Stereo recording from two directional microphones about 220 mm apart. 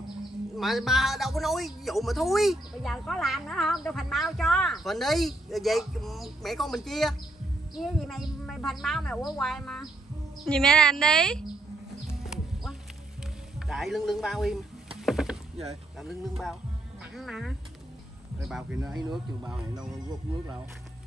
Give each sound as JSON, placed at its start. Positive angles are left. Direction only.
{"t": 0.6, "sound": "a man's voice", "side_deg": 0}
{"t": 13.6, "sound": "a man's voice", "side_deg": 0}
{"t": 15.0, "sound": "rowboat", "side_deg": 0}
{"t": 15.6, "sound": "a man's voice", "side_deg": 0}
{"t": 18.9, "sound": "speech", "side_deg": -20}